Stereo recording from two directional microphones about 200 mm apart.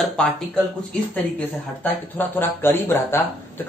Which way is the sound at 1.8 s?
10° left (ahead or behind).